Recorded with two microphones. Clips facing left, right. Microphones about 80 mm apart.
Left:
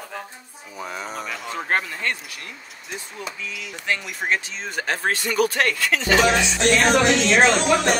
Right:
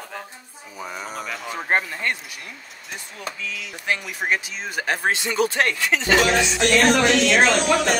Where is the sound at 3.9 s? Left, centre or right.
Centre.